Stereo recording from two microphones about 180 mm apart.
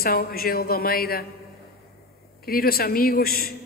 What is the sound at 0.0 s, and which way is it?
A woman's voice, 55° left (ahead or behind).